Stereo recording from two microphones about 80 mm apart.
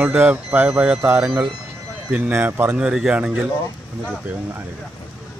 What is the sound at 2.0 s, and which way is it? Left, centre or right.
Speech, right.